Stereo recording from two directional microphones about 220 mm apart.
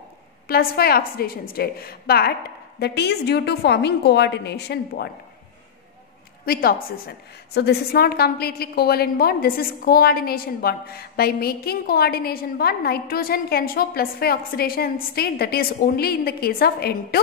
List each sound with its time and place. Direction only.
0.5 s a woman's voice: 45° left (ahead or behind)
6.4 s a woman's voice: 45° left (ahead or behind)